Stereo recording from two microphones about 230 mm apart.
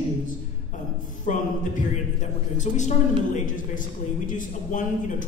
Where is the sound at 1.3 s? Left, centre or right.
Left.